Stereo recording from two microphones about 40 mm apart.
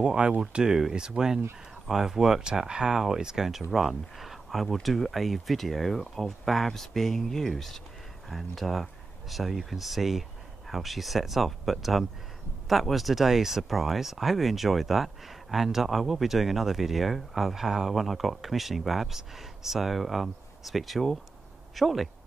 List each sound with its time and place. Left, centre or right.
0.0 s speech: right
3.4 s speech: centre
17.9 s speech: centre